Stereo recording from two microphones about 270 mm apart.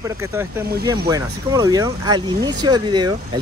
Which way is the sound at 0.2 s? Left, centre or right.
Centre.